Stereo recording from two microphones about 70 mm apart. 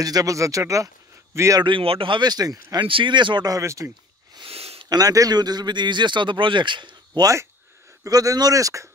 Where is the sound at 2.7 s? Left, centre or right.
Right.